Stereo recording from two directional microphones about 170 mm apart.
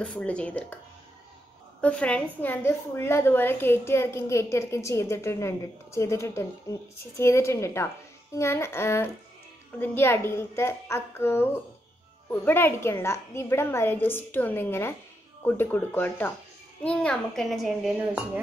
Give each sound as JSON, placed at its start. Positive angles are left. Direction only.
{"t": 0.0, "sound": "a woman's voice", "side_deg": 5}
{"t": 1.8, "sound": "a woman's voice", "side_deg": 5}